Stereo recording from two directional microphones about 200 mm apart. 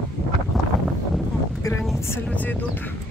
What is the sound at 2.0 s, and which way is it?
Music, 10° left (ahead or behind).